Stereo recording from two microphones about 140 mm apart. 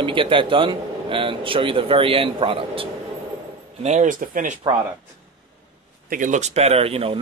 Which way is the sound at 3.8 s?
65° right (ahead or behind).